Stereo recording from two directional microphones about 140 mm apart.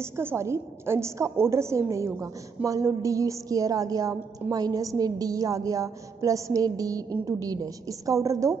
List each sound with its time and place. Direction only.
0.2 s a woman's voice: 15° right (ahead or behind)